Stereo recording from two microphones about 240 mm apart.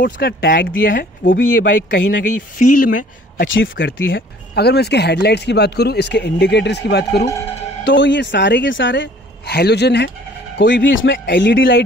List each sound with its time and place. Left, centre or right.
0.0 s speech: left
3.4 s speech: left